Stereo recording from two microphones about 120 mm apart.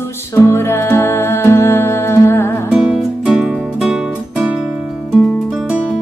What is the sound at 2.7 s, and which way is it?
Music, 5° right (ahead or behind).